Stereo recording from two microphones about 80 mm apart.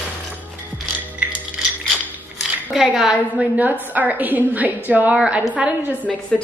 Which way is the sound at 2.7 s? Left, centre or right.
Centre.